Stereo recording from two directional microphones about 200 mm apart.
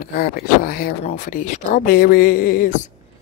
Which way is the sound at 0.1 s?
45° left (ahead or behind).